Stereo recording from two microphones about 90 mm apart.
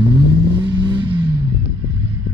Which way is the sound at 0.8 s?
65° right (ahead or behind).